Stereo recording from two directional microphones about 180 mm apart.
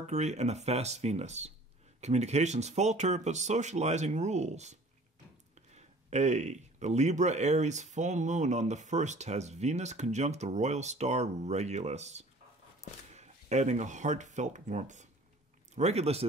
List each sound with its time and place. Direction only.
0.0 s speech: 40° right (ahead or behind)